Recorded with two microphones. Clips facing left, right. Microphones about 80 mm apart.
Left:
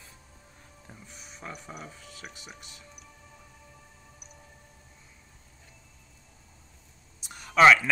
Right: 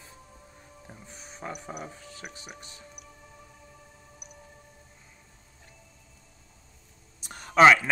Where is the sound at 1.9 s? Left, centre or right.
Right.